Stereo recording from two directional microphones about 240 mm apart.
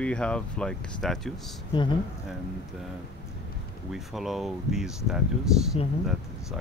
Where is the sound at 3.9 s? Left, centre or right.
Centre.